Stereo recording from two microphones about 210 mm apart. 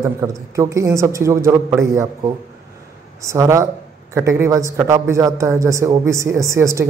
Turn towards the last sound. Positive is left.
turn(degrees=-15)  # may be behind; listen again after turning